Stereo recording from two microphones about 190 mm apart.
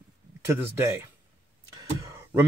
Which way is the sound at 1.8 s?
15° right (ahead or behind).